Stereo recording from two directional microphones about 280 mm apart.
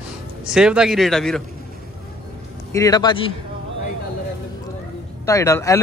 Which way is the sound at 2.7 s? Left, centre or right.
Centre.